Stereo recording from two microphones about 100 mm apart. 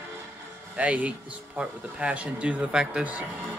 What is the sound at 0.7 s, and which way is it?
Speech, 15° right (ahead or behind).